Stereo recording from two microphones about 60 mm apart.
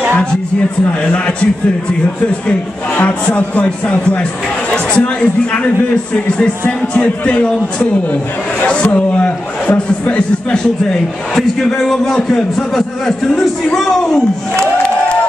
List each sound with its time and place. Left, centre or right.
0.8 s a man's voice: centre
3.0 s speech: left
6.9 s speech: left
11.3 s a man's voice: centre